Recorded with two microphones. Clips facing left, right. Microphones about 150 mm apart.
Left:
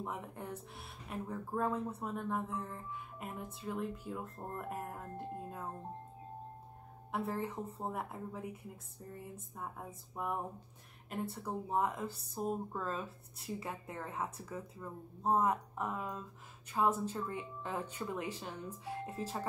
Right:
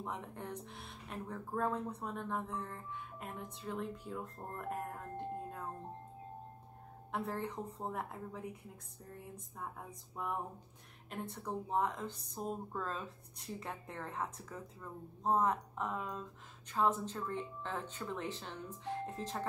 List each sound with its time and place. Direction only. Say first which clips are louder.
0.0 s speech: left 1 dB; 5° left (ahead or behind)
7.1 s speech: left 2 dB; 5° left (ahead or behind)